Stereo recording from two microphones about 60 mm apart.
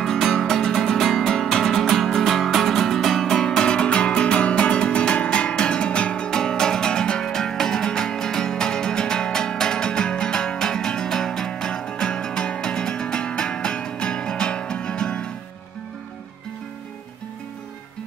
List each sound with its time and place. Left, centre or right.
0.0 s music: centre